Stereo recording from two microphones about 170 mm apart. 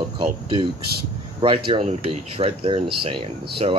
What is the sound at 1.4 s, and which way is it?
Speech, 30° right (ahead or behind).